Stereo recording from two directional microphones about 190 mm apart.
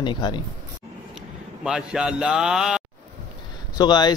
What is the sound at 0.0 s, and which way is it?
Speech, 25° left (ahead or behind).